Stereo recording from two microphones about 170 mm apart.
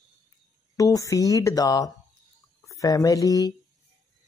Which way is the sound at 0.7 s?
20° left (ahead or behind).